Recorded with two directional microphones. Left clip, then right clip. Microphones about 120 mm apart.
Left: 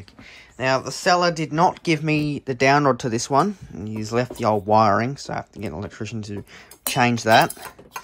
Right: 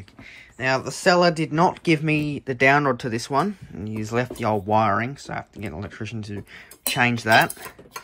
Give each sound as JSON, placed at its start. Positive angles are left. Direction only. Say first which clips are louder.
{"t": 0.6, "sound": "speech", "louder": "left 2 dB", "side_deg": 5}
{"t": 2.1, "sound": "speech", "louder": "left 1 dB", "side_deg": 25}